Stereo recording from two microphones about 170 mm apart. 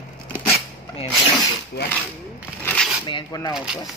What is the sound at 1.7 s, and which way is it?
Cutlery, 65° left (ahead or behind).